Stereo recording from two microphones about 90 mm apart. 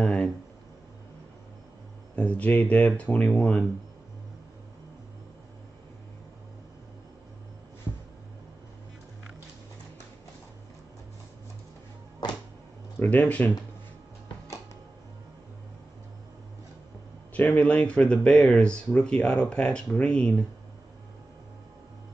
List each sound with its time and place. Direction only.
0.0 s a sound: 10° left (ahead or behind)
2.1 s speech: 15° left (ahead or behind)
12.2 s music: 55° left (ahead or behind)
13.1 s speech: 20° left (ahead or behind)
17.3 s speech: 15° left (ahead or behind)